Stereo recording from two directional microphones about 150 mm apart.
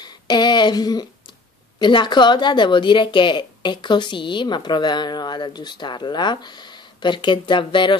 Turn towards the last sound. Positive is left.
turn(degrees=35)  # may be behind; listen again after turning